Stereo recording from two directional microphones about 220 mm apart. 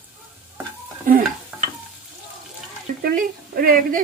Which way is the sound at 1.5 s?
5° right (ahead or behind).